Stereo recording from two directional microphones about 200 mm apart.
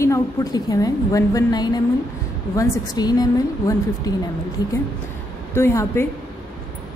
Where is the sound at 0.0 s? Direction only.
15° left (ahead or behind).